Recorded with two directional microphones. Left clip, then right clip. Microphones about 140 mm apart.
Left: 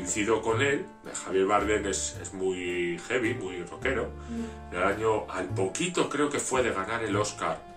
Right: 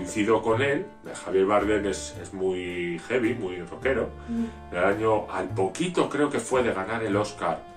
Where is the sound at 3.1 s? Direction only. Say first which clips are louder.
Right 4 dB; 35° left (ahead or behind).